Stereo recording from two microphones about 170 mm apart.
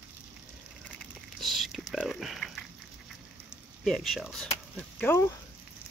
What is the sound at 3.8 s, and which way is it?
Speech, centre (ahead or behind).